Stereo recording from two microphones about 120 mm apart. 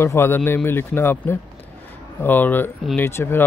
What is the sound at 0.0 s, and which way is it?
A man's voice, 20° left (ahead or behind).